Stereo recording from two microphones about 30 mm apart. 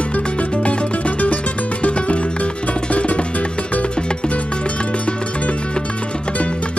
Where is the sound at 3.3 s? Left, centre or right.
Left.